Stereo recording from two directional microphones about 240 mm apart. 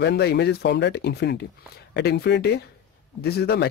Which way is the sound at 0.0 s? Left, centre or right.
Left.